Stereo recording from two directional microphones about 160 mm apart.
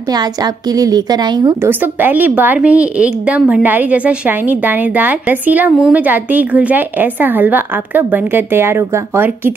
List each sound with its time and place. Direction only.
0.1 s a woman's voice: 25° right (ahead or behind)
1.7 s speech: 10° right (ahead or behind)